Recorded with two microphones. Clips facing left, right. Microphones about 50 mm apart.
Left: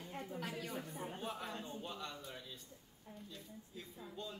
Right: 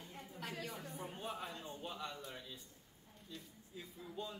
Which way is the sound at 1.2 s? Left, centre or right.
Centre.